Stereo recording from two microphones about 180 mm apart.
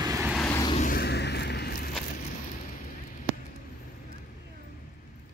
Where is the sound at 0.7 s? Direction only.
55° left (ahead or behind).